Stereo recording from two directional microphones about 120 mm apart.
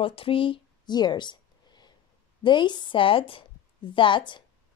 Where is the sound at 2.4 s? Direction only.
40° left (ahead or behind).